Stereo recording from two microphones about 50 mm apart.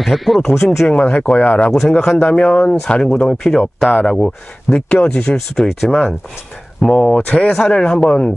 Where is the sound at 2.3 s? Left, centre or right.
Left.